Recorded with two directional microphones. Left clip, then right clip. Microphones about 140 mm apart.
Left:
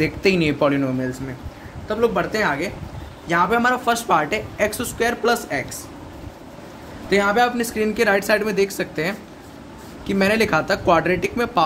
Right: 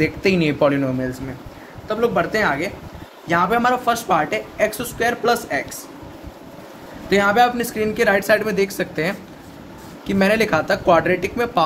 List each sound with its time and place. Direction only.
0.0 s speech: 15° left (ahead or behind)
3.8 s speech: 20° left (ahead or behind)
7.1 s speech: centre (ahead or behind)
7.6 s speech: 15° left (ahead or behind)